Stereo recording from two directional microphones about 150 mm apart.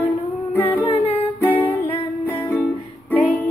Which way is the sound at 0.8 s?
40° left (ahead or behind).